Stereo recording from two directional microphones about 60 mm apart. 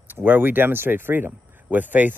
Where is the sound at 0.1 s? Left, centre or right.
Right.